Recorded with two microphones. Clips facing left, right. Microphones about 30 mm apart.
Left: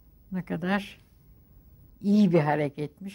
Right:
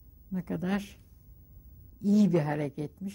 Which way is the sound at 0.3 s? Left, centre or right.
Left.